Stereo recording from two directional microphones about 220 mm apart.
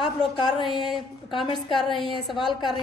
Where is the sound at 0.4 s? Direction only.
20° left (ahead or behind).